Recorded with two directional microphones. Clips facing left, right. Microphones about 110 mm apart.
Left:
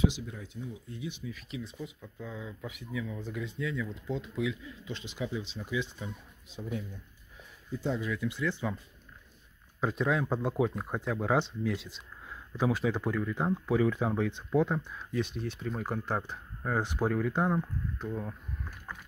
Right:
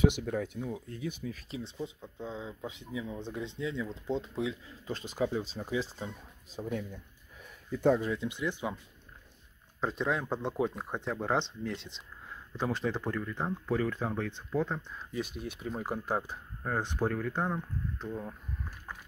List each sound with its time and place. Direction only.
0.0 s speech: 60° right (ahead or behind)
0.7 s speech: 45° right (ahead or behind)
1.5 s speech: 30° right (ahead or behind); by 6.9 s 45° right (ahead or behind)
7.7 s speech: 60° right (ahead or behind)
8.2 s speech: 20° right (ahead or behind)
9.8 s speech: centre (ahead or behind)
15.1 s speech: 5° right (ahead or behind)